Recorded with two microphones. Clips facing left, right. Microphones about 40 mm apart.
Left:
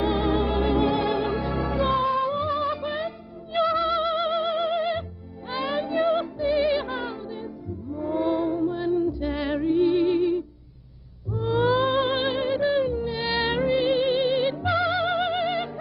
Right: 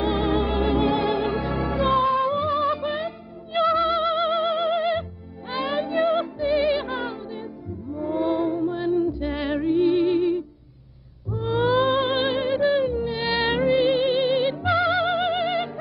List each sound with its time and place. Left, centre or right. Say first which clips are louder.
0.0 s music: right 1 dB; centre
9.3 s music: right 1 dB; centre
9.8 s music: right 1 dB; centre